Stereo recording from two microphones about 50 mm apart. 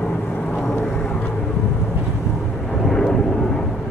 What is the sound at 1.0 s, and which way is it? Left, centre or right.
Vehicle, left.